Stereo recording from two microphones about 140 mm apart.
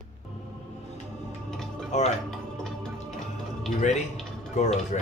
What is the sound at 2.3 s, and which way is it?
Music, 5° left (ahead or behind).